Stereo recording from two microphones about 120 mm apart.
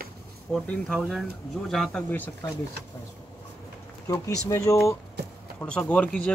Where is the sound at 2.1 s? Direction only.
15° left (ahead or behind).